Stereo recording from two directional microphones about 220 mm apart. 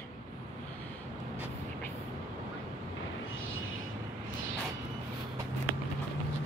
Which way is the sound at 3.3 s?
65° left (ahead or behind).